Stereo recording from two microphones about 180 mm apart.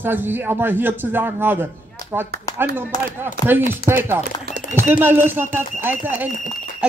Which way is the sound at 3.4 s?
50° right (ahead or behind).